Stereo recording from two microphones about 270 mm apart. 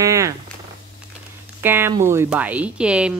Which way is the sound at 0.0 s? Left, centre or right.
Centre.